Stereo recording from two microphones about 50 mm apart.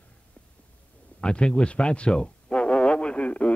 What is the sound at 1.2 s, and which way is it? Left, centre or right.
Radio, centre.